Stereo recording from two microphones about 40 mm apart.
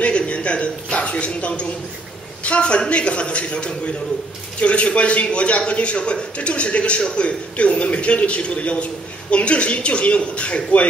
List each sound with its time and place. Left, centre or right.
0.0 s a man's voice: left